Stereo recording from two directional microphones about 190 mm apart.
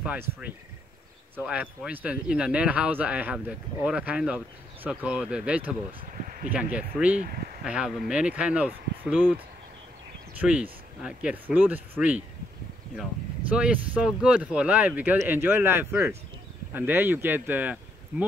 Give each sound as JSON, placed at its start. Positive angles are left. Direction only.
{"t": 0.0, "sound": "speech", "side_deg": -5}
{"t": 6.1, "sound": "a sound", "side_deg": -40}
{"t": 6.5, "sound": "speech", "side_deg": -5}
{"t": 7.2, "sound": "speech", "side_deg": -50}
{"t": 7.6, "sound": "speech", "side_deg": -5}
{"t": 10.4, "sound": "speech", "side_deg": -5}
{"t": 13.5, "sound": "speech", "side_deg": -5}